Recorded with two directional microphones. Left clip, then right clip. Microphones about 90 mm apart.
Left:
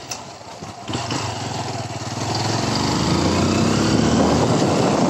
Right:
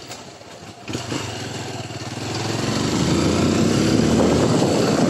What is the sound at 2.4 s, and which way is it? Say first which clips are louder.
Vehicle: left 1 dB; 35° left (ahead or behind).